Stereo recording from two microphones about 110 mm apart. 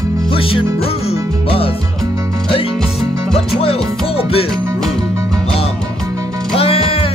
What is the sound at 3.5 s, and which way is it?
Music, 65° left (ahead or behind).